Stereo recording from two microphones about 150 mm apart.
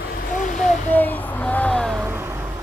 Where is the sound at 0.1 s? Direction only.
60° left (ahead or behind).